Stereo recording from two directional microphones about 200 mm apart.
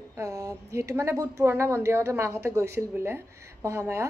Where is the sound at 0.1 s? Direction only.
15° right (ahead or behind).